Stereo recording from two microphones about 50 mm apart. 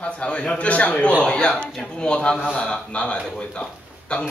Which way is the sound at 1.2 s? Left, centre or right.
Centre.